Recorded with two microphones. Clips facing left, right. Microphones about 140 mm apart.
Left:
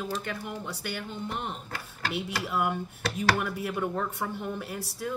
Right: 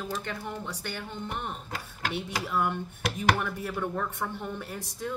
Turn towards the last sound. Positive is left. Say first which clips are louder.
# left 1 dB
turn(degrees=10)  # may be behind; listen again after turning